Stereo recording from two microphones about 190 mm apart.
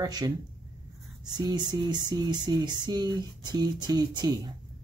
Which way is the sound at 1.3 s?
20° right (ahead or behind).